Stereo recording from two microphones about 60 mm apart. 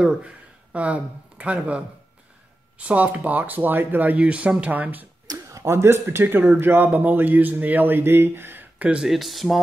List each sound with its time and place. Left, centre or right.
0.7 s speech: right
2.8 s speech: right
4.2 s speech: centre
5.5 s speech: right
8.7 s speech: right
9.0 s speech: centre